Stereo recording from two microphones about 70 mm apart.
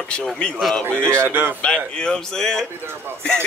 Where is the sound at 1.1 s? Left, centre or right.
Right.